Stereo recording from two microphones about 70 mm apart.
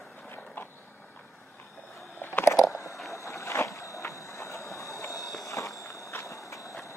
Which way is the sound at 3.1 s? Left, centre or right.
Left.